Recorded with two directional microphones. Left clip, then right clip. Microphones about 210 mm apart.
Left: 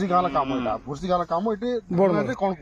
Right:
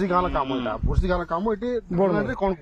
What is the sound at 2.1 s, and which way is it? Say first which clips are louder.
Speech: even; 15° right (ahead or behind).